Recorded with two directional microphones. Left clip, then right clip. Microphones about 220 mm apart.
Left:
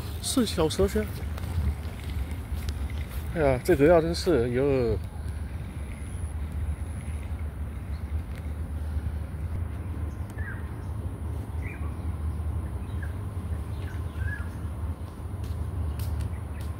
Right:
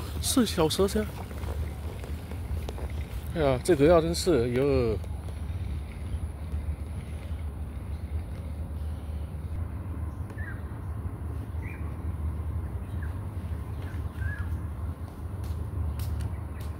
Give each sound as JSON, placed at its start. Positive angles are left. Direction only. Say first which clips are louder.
{"t": 0.2, "sound": "speech", "louder": "right 1 dB", "side_deg": -25}
{"t": 0.7, "sound": "speech", "louder": "even", "side_deg": -5}
{"t": 3.3, "sound": "speech", "louder": "left 1 dB", "side_deg": -5}